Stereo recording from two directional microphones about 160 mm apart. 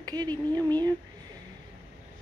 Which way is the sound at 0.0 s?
25° right (ahead or behind).